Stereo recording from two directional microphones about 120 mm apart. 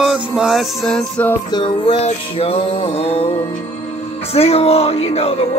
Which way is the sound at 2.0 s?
60° left (ahead or behind).